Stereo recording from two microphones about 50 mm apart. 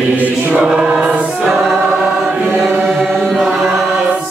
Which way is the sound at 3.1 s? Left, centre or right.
Centre.